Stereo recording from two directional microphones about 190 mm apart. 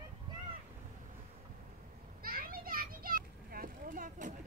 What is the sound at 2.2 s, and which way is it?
Children playing, 50° right (ahead or behind).